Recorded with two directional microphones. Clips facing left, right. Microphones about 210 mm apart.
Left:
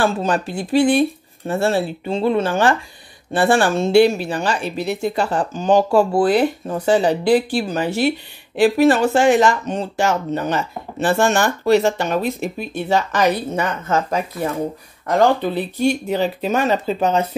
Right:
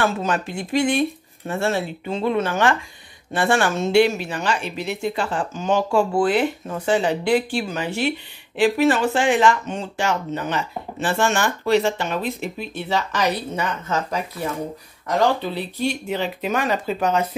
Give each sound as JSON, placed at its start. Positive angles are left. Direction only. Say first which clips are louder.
{"t": 0.0, "sound": "speech", "louder": "left 3 dB", "side_deg": 35}